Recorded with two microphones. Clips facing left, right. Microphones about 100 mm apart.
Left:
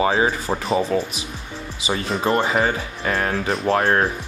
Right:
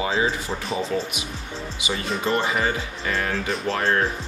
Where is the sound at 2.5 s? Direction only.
45° left (ahead or behind).